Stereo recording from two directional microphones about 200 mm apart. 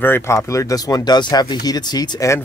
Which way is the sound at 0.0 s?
10° left (ahead or behind).